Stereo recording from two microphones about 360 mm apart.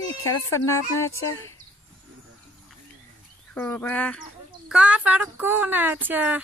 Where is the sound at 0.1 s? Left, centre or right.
Left.